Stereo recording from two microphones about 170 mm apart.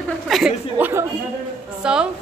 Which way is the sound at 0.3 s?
5° right (ahead or behind).